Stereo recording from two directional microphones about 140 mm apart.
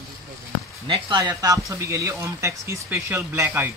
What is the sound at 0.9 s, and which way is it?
Speech, 35° right (ahead or behind).